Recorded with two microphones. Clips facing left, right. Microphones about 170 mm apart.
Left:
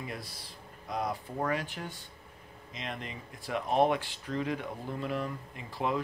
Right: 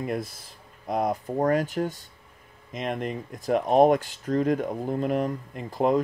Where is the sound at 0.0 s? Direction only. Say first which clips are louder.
Right 11 dB; 50° right (ahead or behind).